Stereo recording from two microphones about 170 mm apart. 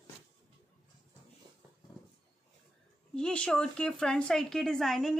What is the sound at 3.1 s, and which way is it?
A woman's voice, 5° left (ahead or behind).